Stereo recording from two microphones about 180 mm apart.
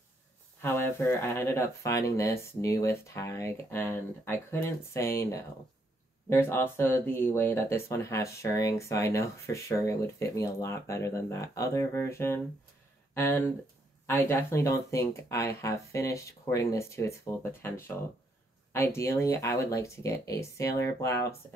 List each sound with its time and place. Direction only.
0.6 s speech: 15° left (ahead or behind)